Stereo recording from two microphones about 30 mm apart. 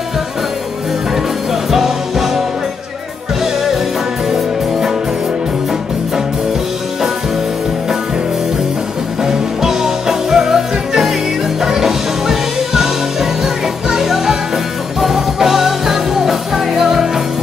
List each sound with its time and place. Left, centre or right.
1.5 s music: centre
4.3 s music: centre
9.2 s music: centre